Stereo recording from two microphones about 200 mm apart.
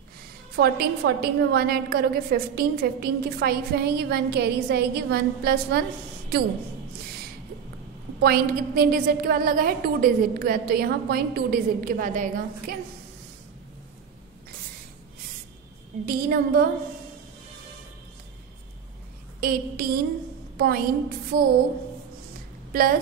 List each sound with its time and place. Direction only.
0.6 s a woman's voice: 55° right (ahead or behind)
8.2 s a woman's voice: 50° right (ahead or behind)
16.1 s a woman's voice: 50° right (ahead or behind)
19.4 s a woman's voice: 50° right (ahead or behind)
22.7 s a woman's voice: 45° right (ahead or behind)